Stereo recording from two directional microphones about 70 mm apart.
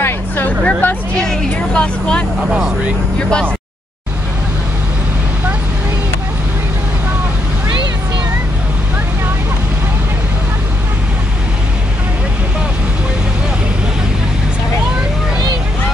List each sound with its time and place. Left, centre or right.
0.0 s hubbub: left
1.1 s vehicle: centre
3.2 s speech: centre